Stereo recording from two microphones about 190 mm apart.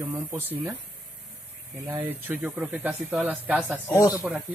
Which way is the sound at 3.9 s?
15° left (ahead or behind).